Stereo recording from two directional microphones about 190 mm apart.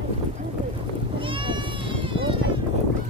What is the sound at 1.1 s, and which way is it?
Sheep, 25° right (ahead or behind).